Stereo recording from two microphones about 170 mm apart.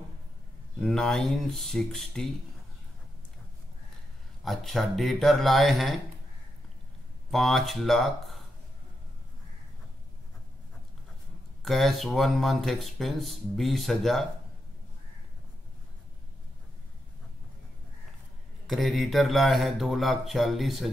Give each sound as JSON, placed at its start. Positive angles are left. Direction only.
{"t": 0.7, "sound": "speech", "side_deg": 5}
{"t": 4.5, "sound": "speech", "side_deg": 0}
{"t": 7.2, "sound": "speech", "side_deg": 0}
{"t": 11.6, "sound": "speech", "side_deg": 0}
{"t": 18.7, "sound": "speech", "side_deg": 0}